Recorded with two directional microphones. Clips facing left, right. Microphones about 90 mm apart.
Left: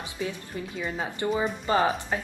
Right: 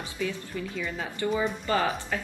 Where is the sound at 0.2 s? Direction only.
30° left (ahead or behind).